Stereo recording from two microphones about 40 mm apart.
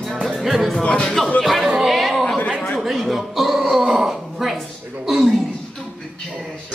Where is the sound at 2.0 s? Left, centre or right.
Centre.